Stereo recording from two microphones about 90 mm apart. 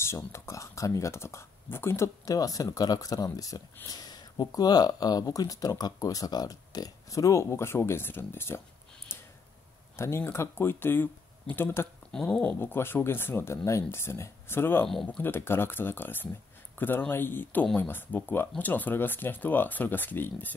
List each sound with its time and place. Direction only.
0.0 s speech: 30° left (ahead or behind)
2.2 s speech: 40° left (ahead or behind); by 8.5 s 25° left (ahead or behind)
9.1 s a sound: 25° left (ahead or behind)
9.9 s speech: 30° left (ahead or behind)
12.1 s speech: 10° left (ahead or behind)